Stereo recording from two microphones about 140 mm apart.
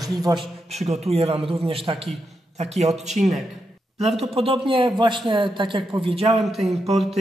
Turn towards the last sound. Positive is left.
turn(degrees=-50)  # may be behind; listen again after turning